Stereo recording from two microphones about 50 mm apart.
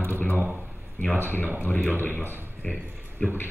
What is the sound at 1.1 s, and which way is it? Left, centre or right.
A man's voice, left.